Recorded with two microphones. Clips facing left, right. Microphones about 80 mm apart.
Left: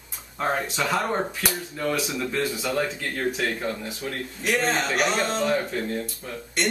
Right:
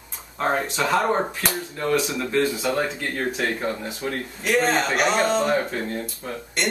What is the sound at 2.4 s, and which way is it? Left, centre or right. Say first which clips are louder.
Speech: right 7 dB; centre.